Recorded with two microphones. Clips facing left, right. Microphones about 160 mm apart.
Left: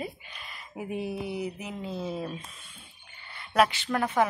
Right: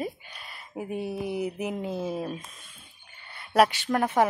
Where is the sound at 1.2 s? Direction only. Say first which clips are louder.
Right 4 dB; 55° right (ahead or behind).